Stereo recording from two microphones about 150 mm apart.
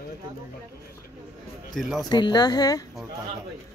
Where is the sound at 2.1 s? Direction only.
30° left (ahead or behind).